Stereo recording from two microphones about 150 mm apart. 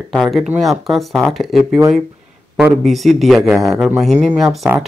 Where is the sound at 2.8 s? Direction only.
Centre (ahead or behind).